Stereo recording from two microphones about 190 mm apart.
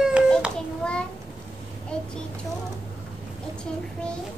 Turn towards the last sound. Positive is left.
turn(degrees=5)  # may be behind; listen again after turning